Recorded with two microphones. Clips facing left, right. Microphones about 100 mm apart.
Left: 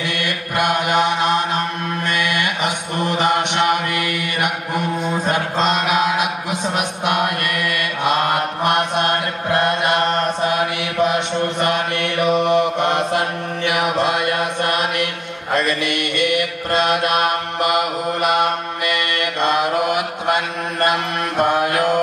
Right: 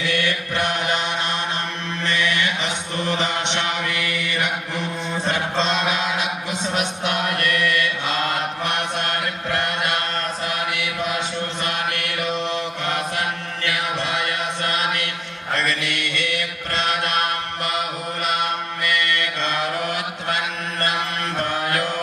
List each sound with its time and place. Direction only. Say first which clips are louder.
0.1 s mantra: even; 15° left (ahead or behind)
2.1 s mantra: even; 15° left (ahead or behind)
3.2 s mantra: left 6 dB; 50° left (ahead or behind)
5.9 s a sound: left 6 dB; 50° left (ahead or behind)
7.1 s mantra: left 5 dB; 50° left (ahead or behind)
8.0 s mantra: left 6 dB; 15° left (ahead or behind)
9.5 s mantra: left 7 dB; 20° left (ahead or behind)
12.2 s mantra: left 10 dB; 60° left (ahead or behind)
12.4 s mantra: left 9 dB; 20° left (ahead or behind)
18.9 s mantra: left 1 dB; 15° left (ahead or behind)
21.4 s mantra: left 7 dB; 15° left (ahead or behind)